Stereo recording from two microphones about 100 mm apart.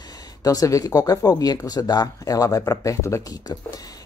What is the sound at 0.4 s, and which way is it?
Speech, 35° left (ahead or behind).